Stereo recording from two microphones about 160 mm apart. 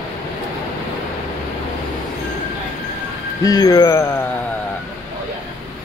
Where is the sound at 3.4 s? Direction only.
25° left (ahead or behind).